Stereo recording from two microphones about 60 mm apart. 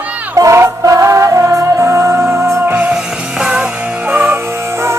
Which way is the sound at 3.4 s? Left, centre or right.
Centre.